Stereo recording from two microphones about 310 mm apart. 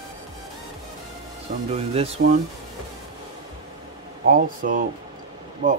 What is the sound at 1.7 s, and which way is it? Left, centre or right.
Speech, centre.